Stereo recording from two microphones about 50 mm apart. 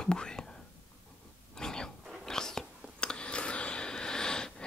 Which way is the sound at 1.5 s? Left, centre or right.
Centre.